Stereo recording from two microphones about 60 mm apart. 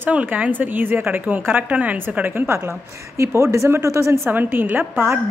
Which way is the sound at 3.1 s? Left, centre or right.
Right.